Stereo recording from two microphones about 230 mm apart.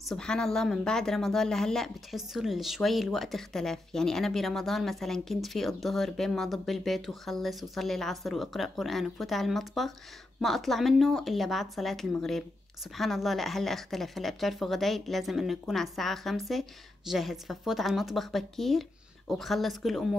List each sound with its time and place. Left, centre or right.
0.0 s speech: centre